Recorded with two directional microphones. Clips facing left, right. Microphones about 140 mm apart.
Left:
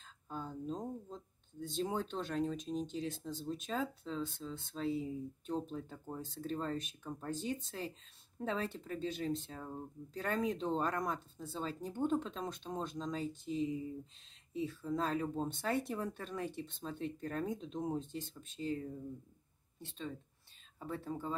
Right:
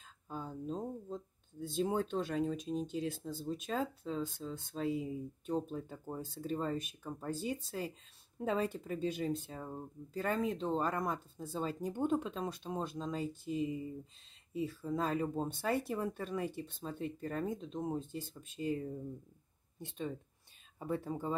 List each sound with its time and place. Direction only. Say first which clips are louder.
0.0 s speech: right 1 dB; 5° right (ahead or behind)